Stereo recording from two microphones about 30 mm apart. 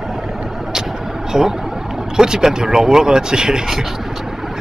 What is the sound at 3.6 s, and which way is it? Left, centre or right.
Vehicle, centre.